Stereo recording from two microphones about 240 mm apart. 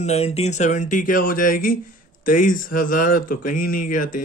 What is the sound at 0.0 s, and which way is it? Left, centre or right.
Speech, left.